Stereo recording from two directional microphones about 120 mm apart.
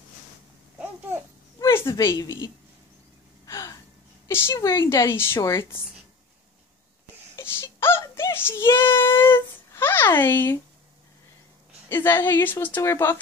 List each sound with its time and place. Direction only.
1.6 s a woman's voice: 20° left (ahead or behind)
3.4 s gasp: 25° left (ahead or behind)
4.3 s a woman's voice: 20° left (ahead or behind)
7.3 s child singing: 20° left (ahead or behind)
10.1 s a woman's voice: 20° left (ahead or behind)
11.9 s a woman's voice: 20° left (ahead or behind)